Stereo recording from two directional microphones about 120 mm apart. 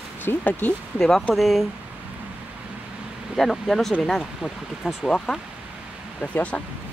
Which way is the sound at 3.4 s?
Centre (ahead or behind).